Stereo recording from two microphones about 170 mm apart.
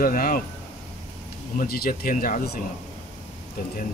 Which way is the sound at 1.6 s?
60° left (ahead or behind).